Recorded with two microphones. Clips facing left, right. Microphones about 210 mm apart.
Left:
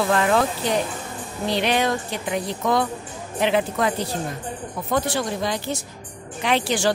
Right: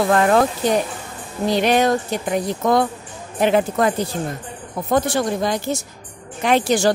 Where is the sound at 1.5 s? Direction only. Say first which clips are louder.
Right 5 dB; 45° right (ahead or behind).